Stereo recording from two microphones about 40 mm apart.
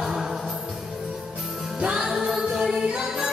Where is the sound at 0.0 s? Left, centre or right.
Centre.